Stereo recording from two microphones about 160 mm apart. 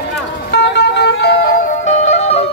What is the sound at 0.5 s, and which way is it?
Vehicle, 90° left.